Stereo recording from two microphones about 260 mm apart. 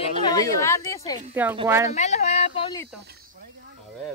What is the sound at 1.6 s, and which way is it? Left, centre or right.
Speech, centre.